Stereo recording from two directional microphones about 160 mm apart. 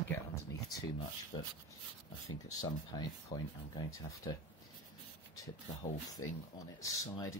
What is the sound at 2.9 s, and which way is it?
Speech, 25° left (ahead or behind).